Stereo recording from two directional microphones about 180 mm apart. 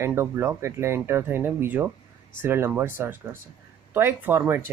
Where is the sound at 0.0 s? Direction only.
15° right (ahead or behind).